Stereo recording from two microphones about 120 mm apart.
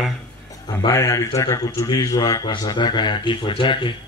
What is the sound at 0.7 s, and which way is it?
Speech, 40° left (ahead or behind).